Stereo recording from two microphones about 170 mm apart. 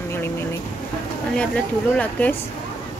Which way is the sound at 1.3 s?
5° left (ahead or behind).